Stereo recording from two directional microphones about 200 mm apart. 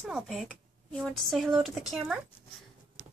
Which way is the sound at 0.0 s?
Centre (ahead or behind).